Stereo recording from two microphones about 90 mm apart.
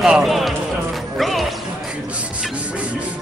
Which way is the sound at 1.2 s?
Centre (ahead or behind).